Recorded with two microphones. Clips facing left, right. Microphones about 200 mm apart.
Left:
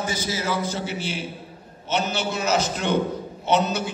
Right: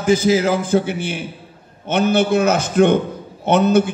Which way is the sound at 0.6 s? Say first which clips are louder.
Right 9 dB; 55° right (ahead or behind).